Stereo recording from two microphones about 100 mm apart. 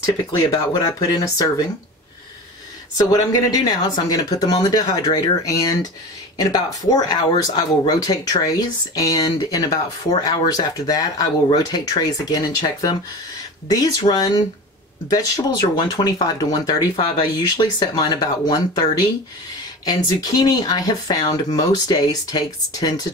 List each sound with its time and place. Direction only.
0.5 s speech: 40° left (ahead or behind)
3.0 s speech: 40° left (ahead or behind)
19.9 s speech: 40° left (ahead or behind)